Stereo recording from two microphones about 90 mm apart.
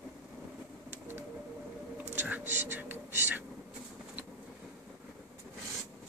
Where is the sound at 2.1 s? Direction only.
20° right (ahead or behind).